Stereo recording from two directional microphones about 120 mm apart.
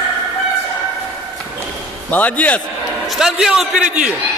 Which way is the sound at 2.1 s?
10° left (ahead or behind).